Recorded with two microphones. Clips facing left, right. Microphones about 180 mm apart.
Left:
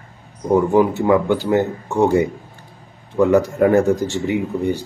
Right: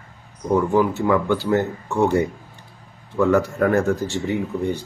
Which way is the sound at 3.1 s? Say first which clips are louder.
Left 3 dB; 15° left (ahead or behind).